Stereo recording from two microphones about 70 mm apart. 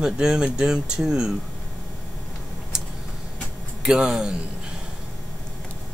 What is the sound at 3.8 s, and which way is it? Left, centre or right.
Speech, centre.